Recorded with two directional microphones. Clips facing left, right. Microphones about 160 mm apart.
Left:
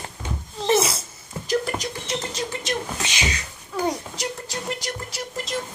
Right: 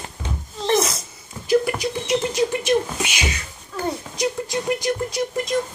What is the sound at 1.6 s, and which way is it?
Rodents, 10° right (ahead or behind).